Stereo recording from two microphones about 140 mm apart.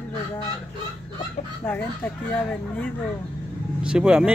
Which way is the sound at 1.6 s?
15° left (ahead or behind).